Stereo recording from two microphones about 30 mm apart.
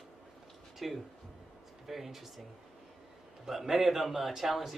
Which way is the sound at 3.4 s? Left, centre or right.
Centre.